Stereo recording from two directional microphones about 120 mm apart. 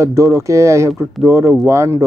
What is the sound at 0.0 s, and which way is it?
Speech, 25° right (ahead or behind).